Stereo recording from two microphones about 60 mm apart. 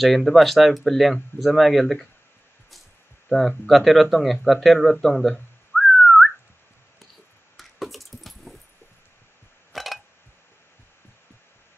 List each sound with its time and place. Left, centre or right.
0.0 s speech: centre
3.3 s speech: left
3.6 s speech: centre
5.8 s whistling: centre
7.5 s keys jangling: centre
9.7 s a sound: centre